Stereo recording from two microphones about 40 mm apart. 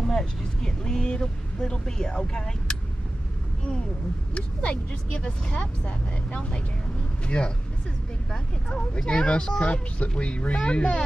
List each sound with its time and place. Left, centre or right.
0.0 s speech: centre
4.3 s speech: left
8.3 s speech: centre